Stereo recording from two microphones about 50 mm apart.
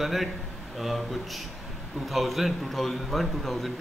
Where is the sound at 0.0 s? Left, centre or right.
Centre.